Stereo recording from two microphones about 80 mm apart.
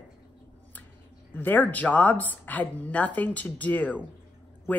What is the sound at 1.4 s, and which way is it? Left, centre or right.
A woman's voice, left.